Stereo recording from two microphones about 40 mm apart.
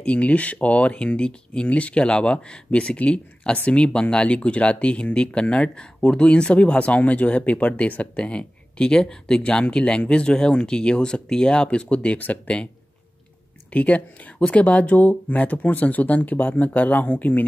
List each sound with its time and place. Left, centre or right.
0.0 s speech: left
13.7 s speech: left